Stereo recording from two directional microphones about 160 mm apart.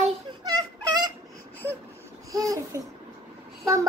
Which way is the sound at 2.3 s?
20° right (ahead or behind).